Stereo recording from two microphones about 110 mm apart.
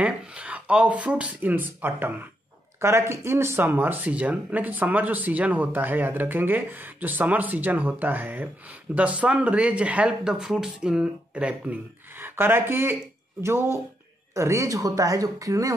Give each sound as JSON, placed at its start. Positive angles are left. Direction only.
{"t": 0.0, "sound": "speech", "side_deg": -10}